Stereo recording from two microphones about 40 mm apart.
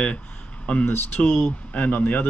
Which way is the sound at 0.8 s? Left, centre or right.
Left.